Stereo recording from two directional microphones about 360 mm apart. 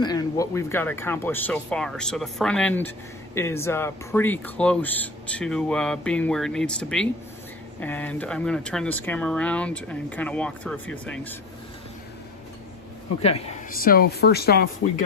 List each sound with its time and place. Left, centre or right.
0.0 s speech: centre
13.2 s speech: centre